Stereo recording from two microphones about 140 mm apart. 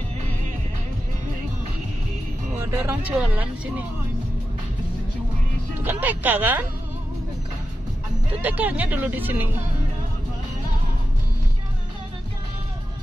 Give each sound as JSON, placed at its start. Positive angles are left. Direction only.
{"t": 2.5, "sound": "speech", "side_deg": -20}
{"t": 5.8, "sound": "speech", "side_deg": -15}
{"t": 8.4, "sound": "speech", "side_deg": -10}